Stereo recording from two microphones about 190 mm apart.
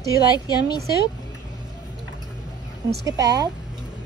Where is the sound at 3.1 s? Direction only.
20° right (ahead or behind).